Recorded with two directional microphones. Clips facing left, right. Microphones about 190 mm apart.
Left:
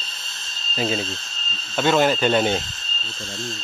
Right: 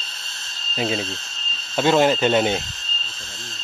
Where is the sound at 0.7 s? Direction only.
15° right (ahead or behind).